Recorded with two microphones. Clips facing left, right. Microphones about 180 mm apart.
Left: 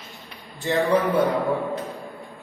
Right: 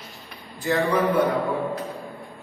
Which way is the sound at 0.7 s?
15° left (ahead or behind).